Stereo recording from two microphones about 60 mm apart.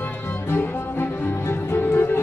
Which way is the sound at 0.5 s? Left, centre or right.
Left.